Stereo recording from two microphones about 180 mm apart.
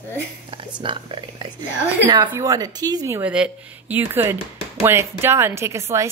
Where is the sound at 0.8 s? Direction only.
30° right (ahead or behind).